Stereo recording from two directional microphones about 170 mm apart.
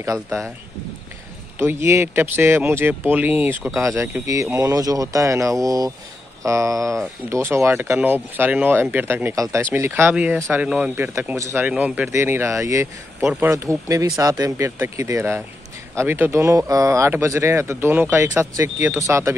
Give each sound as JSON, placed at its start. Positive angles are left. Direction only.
{"t": 0.0, "sound": "speech", "side_deg": -15}
{"t": 1.6, "sound": "speech", "side_deg": -15}
{"t": 13.2, "sound": "speech", "side_deg": -5}